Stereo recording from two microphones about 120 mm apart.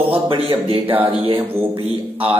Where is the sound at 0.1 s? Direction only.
50° right (ahead or behind).